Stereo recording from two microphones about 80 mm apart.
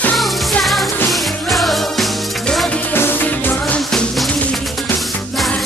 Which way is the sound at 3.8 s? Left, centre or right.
Centre.